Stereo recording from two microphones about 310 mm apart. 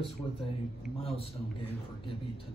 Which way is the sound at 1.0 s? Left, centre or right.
Centre.